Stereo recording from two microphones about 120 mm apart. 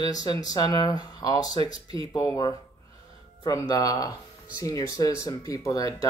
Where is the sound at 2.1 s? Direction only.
20° left (ahead or behind).